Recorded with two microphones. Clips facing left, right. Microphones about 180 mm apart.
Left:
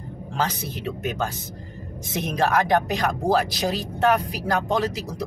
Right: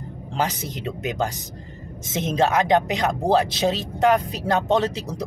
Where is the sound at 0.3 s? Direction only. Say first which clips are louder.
Right 1 dB; 15° right (ahead or behind).